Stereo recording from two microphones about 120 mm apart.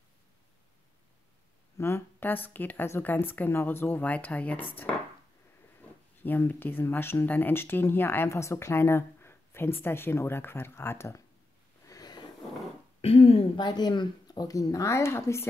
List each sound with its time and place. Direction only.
1.8 s a woman's voice: 20° left (ahead or behind)
6.2 s speech: 15° left (ahead or behind)
11.8 s a sound: 30° left (ahead or behind)
13.0 s a woman's voice: 55° left (ahead or behind)
13.6 s speech: 35° left (ahead or behind)